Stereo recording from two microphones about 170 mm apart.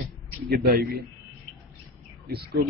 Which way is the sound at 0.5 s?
65° right (ahead or behind).